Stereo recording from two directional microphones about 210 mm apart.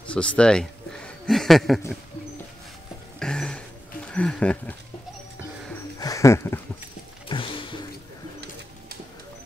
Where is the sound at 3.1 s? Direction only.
5° left (ahead or behind).